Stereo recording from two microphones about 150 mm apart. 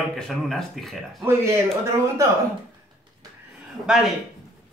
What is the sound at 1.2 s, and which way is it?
A man's voice, 20° right (ahead or behind).